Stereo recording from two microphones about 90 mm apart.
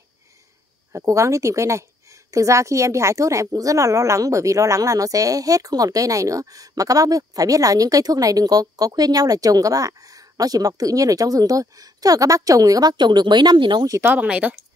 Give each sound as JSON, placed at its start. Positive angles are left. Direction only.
{"t": 0.9, "sound": "speech", "side_deg": -35}
{"t": 14.0, "sound": "speech", "side_deg": -15}